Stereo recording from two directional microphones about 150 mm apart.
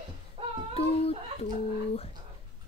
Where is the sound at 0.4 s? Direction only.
40° right (ahead or behind).